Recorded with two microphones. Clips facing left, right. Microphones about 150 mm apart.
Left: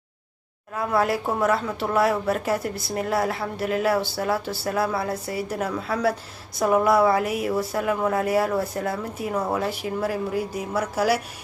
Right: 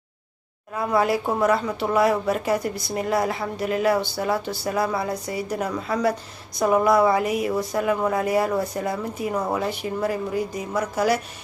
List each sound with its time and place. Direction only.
0.7 s speech: centre (ahead or behind)